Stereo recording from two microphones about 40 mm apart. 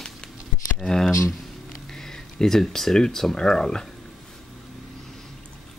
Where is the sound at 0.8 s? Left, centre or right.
Centre.